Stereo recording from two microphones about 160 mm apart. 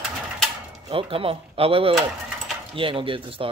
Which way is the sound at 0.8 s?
35° right (ahead or behind).